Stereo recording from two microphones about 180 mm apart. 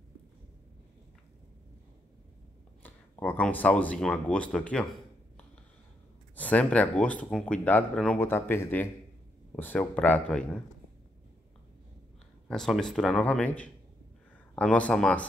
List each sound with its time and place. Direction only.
2.8 s speech: 10° left (ahead or behind)
6.3 s speech: 10° left (ahead or behind)
12.4 s speech: centre (ahead or behind)